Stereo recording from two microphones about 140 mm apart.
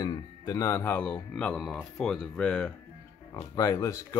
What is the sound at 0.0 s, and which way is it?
Speech, 30° left (ahead or behind).